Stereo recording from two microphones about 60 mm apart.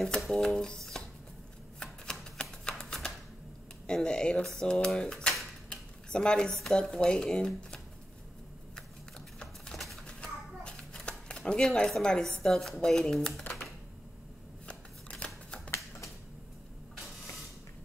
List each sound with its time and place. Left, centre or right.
0.0 s a sound: centre
3.8 s speech: centre
4.6 s cutlery: centre
9.8 s bird: centre
10.0 s a sound: centre
11.9 s speech: centre
14.7 s scissors: centre